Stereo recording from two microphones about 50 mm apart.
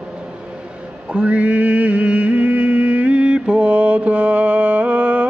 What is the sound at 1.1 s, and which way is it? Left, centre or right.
Mantra, right.